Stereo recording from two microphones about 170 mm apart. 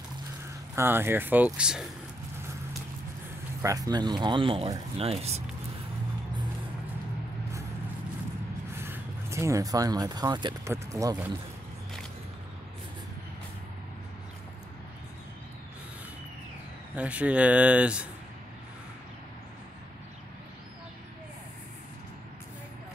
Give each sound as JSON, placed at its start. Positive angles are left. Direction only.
{"t": 0.7, "sound": "speech", "side_deg": -15}
{"t": 3.6, "sound": "speech", "side_deg": -20}
{"t": 8.7, "sound": "speech", "side_deg": -15}
{"t": 16.9, "sound": "speech", "side_deg": -10}